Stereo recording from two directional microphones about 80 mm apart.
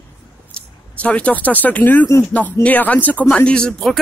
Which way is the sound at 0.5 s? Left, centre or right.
Centre.